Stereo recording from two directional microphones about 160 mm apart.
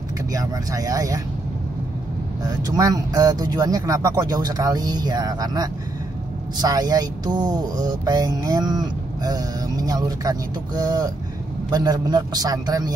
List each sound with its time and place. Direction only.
0.3 s speech: 20° right (ahead or behind)
2.6 s speech: 25° right (ahead or behind)